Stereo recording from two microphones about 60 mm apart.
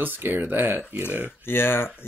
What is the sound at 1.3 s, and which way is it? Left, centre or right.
Speech, left.